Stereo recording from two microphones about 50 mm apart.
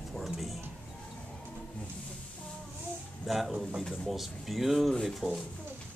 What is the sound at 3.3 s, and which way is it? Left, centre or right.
Speech, centre.